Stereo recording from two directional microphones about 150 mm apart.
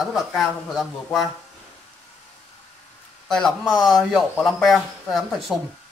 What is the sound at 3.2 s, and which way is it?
Speech, centre (ahead or behind).